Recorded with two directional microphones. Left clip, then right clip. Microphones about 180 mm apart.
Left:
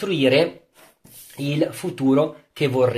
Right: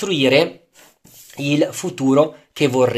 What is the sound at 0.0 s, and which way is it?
Speech, 30° right (ahead or behind).